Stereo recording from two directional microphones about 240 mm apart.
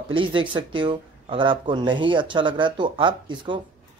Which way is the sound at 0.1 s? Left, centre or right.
Right.